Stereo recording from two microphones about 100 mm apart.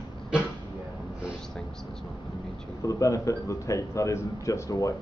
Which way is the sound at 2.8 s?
30° left (ahead or behind).